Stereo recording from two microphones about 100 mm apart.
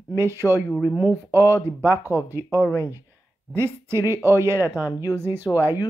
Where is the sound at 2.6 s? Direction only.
30° left (ahead or behind).